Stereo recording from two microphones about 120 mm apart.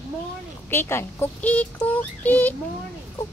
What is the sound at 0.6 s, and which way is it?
Speech, 20° left (ahead or behind).